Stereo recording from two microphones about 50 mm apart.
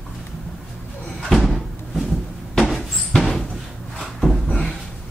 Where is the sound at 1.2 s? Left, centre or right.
Centre.